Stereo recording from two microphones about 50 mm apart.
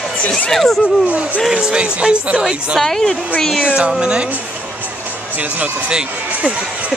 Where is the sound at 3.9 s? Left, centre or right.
Centre.